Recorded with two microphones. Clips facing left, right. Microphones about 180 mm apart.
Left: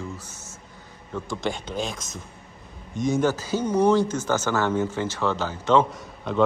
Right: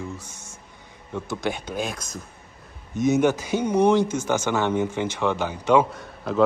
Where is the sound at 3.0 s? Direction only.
10° right (ahead or behind).